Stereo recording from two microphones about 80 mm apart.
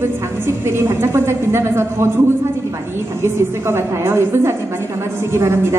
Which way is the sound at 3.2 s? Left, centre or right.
Right.